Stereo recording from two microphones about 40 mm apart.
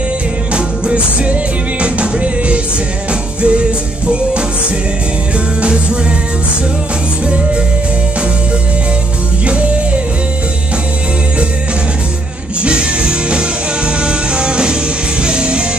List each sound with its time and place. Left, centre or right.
0.5 s music: right
5.6 s music: right
13.3 s music: right